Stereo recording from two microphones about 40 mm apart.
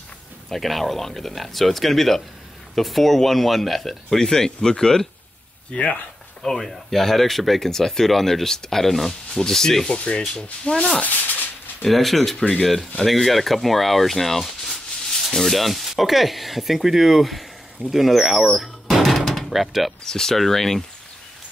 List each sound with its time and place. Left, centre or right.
0.5 s speech: centre
4.2 s speech: centre
5.7 s speech: left
6.4 s speech: centre
9.9 s speech: left
11.0 s a sound: left
11.8 s speech: centre
12.4 s speech: centre
13.0 s speech: centre
20.1 s speech: centre